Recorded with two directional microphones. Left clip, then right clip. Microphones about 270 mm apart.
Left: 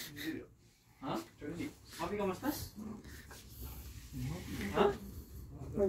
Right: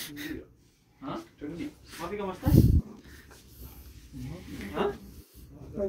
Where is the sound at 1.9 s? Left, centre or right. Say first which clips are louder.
Right 2 dB; centre.